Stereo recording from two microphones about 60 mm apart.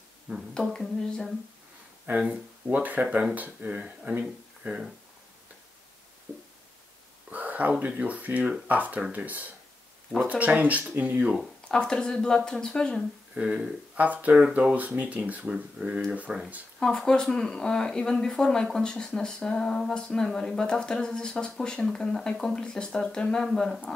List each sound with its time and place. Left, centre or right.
0.6 s speech: centre
2.1 s speech: right
2.7 s speech: right
7.2 s a sound: right
7.8 s speech: right
11.7 s speech: centre
13.3 s speech: centre
16.8 s speech: centre